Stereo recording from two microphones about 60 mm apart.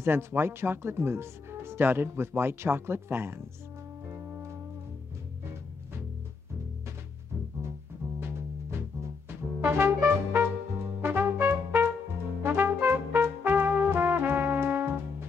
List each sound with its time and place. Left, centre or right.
0.0 s speech: right
4.1 s music: right
8.2 s music: right
9.3 s brass instrument: right
11.0 s trumpet: right